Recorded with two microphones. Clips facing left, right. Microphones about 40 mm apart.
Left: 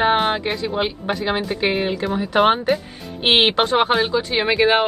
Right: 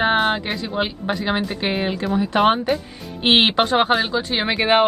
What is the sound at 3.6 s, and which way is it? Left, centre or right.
Speech, right.